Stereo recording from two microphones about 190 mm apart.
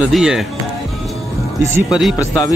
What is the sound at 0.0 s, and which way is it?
Speech, 5° right (ahead or behind).